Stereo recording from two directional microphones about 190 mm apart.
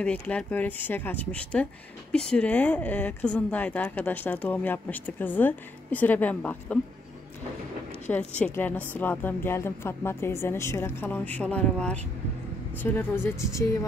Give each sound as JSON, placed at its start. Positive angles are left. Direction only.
{"t": 0.0, "sound": "speech", "side_deg": 5}
{"t": 8.1, "sound": "speech", "side_deg": 10}